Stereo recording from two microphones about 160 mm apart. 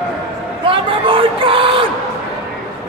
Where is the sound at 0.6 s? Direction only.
35° right (ahead or behind).